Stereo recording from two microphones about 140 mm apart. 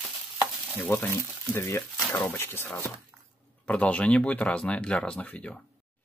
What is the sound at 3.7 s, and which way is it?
Speech, 10° left (ahead or behind).